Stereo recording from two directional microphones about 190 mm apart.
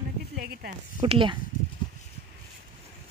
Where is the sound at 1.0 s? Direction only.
30° right (ahead or behind).